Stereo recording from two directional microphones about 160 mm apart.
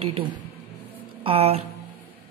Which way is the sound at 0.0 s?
35° right (ahead or behind).